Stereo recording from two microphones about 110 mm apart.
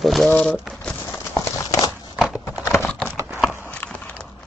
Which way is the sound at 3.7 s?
10° left (ahead or behind).